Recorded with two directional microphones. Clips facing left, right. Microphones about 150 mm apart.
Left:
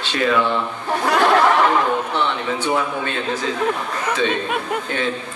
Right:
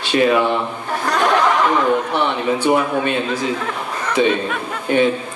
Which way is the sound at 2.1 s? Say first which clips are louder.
Right 3 dB; 15° right (ahead or behind).